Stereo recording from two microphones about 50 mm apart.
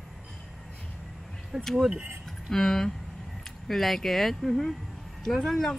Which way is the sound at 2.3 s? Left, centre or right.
Centre.